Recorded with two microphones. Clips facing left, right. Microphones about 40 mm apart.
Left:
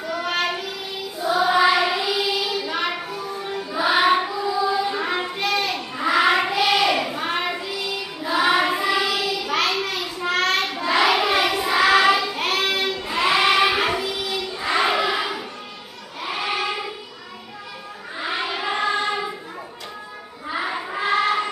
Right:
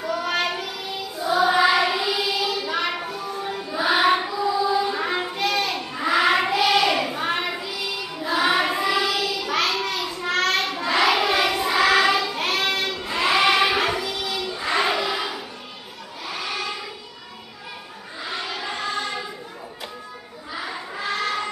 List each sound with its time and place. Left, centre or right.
0.0 s child singing: centre
1.1 s choir: centre
10.2 s child singing: centre
16.3 s choir: left
18.2 s choir: left
20.4 s a sound: left